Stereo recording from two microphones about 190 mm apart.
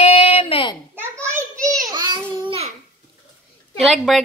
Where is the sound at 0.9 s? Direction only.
10° right (ahead or behind).